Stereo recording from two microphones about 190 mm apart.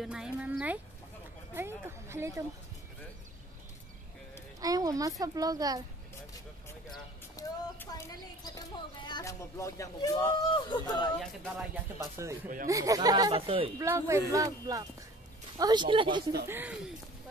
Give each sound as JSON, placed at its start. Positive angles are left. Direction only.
{"t": 0.0, "sound": "speech", "side_deg": -5}
{"t": 4.6, "sound": "speech", "side_deg": -20}
{"t": 6.9, "sound": "speech", "side_deg": 20}
{"t": 12.0, "sound": "speech", "side_deg": -15}
{"t": 13.7, "sound": "speech", "side_deg": -15}
{"t": 16.4, "sound": "speech", "side_deg": -10}